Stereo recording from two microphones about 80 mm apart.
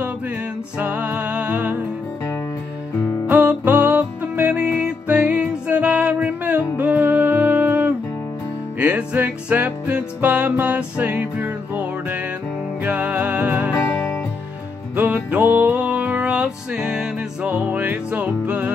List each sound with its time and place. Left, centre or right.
0.7 s music: centre
3.3 s music: right
13.9 s music: left
15.1 s music: centre